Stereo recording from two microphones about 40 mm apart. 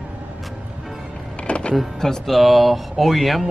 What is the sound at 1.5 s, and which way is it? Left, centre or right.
Music, left.